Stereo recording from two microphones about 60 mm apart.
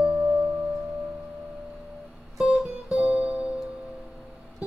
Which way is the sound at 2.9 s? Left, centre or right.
Centre.